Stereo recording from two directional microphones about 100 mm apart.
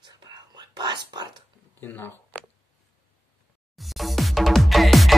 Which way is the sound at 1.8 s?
20° left (ahead or behind).